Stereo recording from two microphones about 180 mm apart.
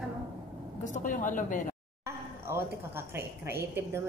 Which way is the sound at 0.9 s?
45° left (ahead or behind).